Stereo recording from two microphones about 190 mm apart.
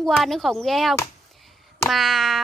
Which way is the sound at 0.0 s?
Centre (ahead or behind).